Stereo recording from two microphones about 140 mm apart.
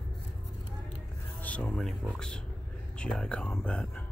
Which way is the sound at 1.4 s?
10° left (ahead or behind).